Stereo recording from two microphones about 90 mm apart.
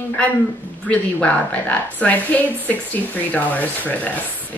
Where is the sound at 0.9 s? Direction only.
15° left (ahead or behind).